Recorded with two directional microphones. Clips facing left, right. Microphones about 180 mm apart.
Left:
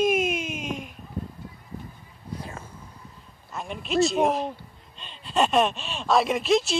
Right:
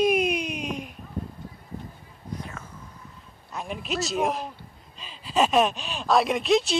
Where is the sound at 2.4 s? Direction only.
30° left (ahead or behind).